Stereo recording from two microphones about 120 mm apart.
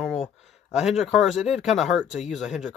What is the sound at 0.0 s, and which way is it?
Speech, 5° right (ahead or behind).